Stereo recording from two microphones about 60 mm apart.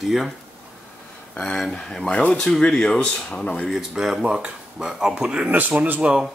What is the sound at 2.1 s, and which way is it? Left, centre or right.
Speech, left.